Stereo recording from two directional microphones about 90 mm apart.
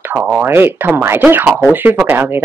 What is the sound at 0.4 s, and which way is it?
Speech, 25° right (ahead or behind).